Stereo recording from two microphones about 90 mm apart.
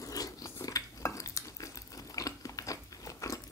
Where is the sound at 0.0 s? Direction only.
40° left (ahead or behind).